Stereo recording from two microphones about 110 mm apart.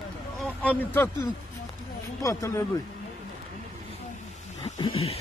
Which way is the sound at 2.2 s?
30° left (ahead or behind).